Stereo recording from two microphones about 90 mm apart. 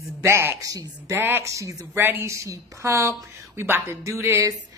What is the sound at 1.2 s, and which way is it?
A woman's voice, 25° right (ahead or behind).